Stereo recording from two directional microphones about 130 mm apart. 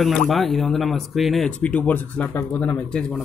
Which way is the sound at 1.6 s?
10° left (ahead or behind).